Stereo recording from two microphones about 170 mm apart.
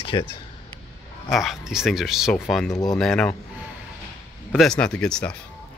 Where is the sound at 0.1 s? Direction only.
25° left (ahead or behind).